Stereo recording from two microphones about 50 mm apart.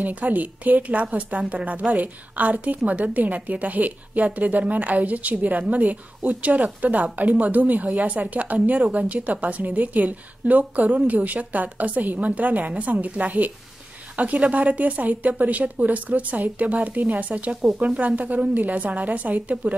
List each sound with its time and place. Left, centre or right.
0.0 s a woman's voice: right